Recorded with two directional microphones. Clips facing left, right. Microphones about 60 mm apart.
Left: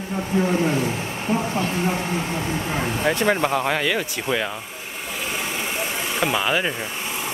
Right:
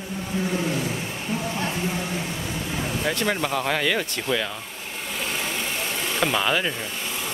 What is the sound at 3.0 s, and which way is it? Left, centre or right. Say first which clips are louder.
Speech: left 5 dB; left.